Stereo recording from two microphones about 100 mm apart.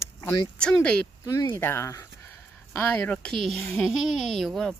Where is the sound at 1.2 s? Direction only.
35° left (ahead or behind).